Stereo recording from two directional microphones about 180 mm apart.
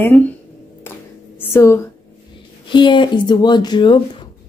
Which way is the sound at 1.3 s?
15° left (ahead or behind).